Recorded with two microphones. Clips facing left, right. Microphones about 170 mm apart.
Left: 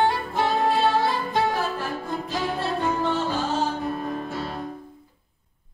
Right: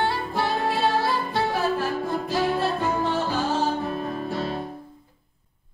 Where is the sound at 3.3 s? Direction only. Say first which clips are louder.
Right 1 dB; 20° left (ahead or behind).